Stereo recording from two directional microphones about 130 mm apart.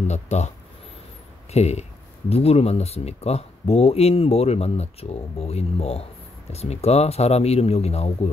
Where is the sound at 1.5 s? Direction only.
55° left (ahead or behind).